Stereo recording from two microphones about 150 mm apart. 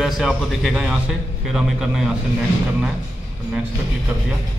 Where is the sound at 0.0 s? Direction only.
Centre (ahead or behind).